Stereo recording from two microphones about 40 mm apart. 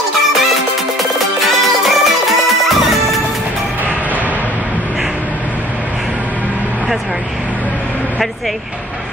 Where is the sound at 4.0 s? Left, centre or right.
Right.